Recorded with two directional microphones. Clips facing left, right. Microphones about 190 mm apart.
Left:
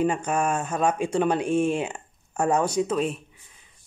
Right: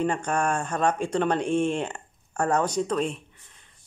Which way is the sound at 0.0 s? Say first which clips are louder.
Left 2 dB; 5° left (ahead or behind).